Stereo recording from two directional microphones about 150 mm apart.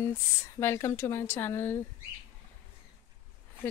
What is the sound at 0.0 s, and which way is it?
A woman's voice, 15° left (ahead or behind).